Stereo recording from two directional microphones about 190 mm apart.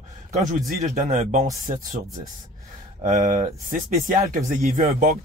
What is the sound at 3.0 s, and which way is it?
Speech, 40° right (ahead or behind).